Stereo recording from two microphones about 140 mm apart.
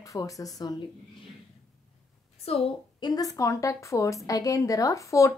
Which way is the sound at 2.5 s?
45° left (ahead or behind).